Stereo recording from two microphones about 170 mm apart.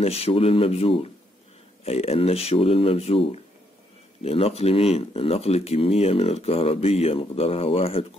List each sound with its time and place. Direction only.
0.0 s speech: 35° left (ahead or behind)